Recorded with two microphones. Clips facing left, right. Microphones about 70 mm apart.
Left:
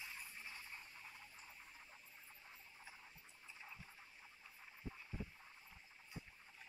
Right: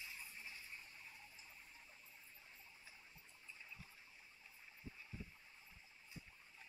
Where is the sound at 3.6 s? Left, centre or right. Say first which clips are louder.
Left 3 dB; left.